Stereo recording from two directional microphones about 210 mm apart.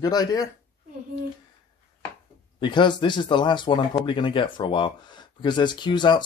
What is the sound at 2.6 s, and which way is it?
Speech, 20° left (ahead or behind).